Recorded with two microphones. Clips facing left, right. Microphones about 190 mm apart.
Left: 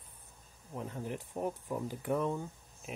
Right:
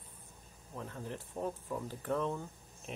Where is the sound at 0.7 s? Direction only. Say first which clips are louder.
Left 3 dB; 15° left (ahead or behind).